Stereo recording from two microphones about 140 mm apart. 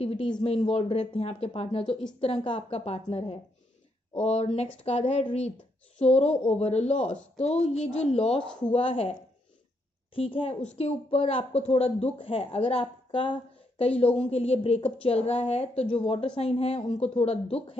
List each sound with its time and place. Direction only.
0.0 s speech: 45° left (ahead or behind)
7.0 s speech: 10° left (ahead or behind)
7.6 s a woman's voice: 55° left (ahead or behind)
10.1 s a woman's voice: 40° left (ahead or behind)